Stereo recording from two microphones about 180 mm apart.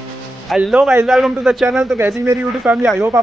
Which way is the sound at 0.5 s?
5° right (ahead or behind).